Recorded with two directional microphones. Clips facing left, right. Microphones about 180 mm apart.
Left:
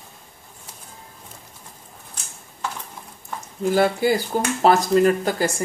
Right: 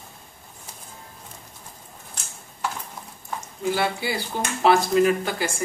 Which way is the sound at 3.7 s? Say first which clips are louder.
Left 8 dB; 45° left (ahead or behind).